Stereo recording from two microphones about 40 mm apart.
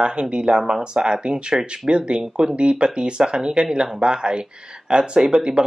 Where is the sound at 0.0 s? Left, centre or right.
Right.